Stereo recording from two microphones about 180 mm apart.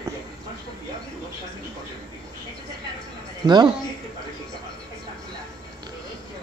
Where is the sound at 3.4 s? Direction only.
20° right (ahead or behind).